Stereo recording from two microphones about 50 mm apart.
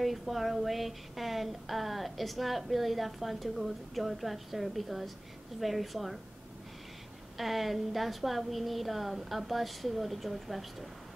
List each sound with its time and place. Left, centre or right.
0.0 s speech: centre
7.3 s speech: centre